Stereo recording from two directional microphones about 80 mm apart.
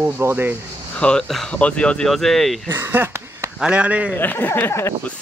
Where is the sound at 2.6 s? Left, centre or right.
Right.